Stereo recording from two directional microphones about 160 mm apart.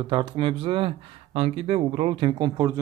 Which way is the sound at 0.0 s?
30° right (ahead or behind).